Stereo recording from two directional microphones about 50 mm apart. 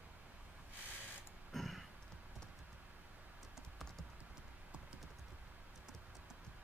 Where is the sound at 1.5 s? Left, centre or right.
Centre.